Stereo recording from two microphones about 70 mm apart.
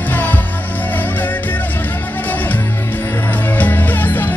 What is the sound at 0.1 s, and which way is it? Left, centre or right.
Music, left.